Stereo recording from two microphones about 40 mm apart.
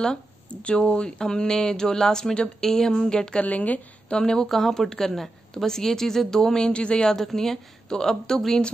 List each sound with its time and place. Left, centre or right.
0.0 s speech: centre
3.4 s speech: left
4.1 s speech: centre
4.5 s speech: centre; by 7.1 s left
7.1 s speech: centre